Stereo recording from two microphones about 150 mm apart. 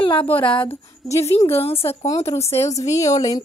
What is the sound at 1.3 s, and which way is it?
A woman's voice, 40° left (ahead or behind).